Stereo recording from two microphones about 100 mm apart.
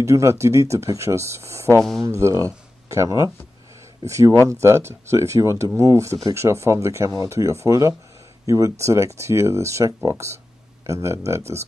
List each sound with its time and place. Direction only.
0.0 s speech: 30° right (ahead or behind)
1.8 s speech: centre (ahead or behind)
2.0 s speech: 30° right (ahead or behind)